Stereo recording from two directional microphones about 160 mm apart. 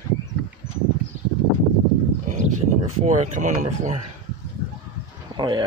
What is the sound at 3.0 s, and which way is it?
Speech, 45° right (ahead or behind).